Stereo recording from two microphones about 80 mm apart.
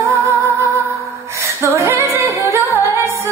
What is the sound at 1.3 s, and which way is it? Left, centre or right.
Female singing, right.